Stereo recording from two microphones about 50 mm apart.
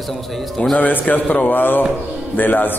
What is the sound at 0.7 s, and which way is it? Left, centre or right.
Speech, left.